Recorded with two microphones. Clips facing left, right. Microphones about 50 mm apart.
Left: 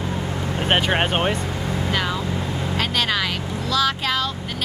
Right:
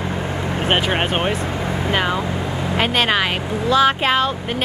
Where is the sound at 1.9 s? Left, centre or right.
Right.